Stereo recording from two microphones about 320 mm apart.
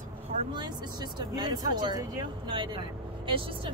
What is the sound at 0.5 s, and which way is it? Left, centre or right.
Speech, centre.